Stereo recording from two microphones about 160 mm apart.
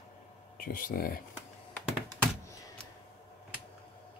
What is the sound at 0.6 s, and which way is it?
Speech, 60° left (ahead or behind).